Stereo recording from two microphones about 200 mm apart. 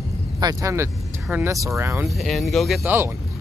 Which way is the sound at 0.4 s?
15° right (ahead or behind).